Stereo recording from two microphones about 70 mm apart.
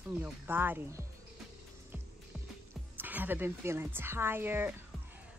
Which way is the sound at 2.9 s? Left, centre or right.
Right.